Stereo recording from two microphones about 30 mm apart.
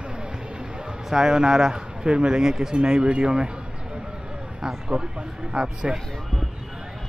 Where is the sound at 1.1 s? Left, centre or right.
Right.